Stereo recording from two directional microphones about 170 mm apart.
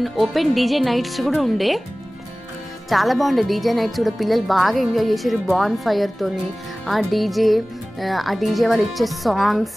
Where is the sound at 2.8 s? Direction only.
Centre (ahead or behind).